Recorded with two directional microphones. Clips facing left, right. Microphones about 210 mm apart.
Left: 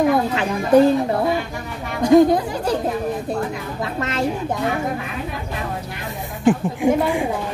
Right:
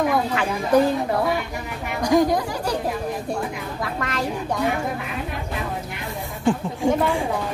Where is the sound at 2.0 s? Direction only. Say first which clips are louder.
Left 6 dB; 25° left (ahead or behind).